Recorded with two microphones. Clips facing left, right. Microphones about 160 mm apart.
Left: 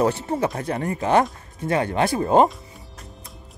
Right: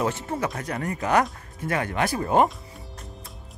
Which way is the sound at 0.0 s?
30° left (ahead or behind).